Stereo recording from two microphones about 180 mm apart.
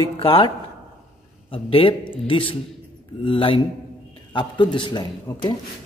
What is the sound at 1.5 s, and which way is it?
Speech, 30° left (ahead or behind).